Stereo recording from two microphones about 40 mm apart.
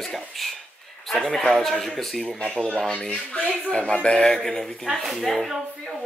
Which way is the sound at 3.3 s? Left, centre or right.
Left.